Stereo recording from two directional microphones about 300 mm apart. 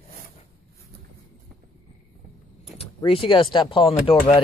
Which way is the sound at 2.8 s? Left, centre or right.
Centre.